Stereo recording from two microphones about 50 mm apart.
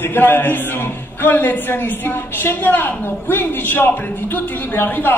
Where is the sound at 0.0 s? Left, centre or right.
Left.